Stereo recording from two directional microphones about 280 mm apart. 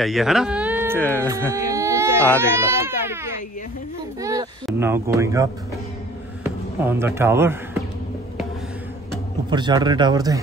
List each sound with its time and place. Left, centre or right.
0.0 s speech: centre
0.9 s speech: centre
1.5 s baby cry: centre
4.2 s a sound: centre
4.6 s speech: centre
9.5 s speech: centre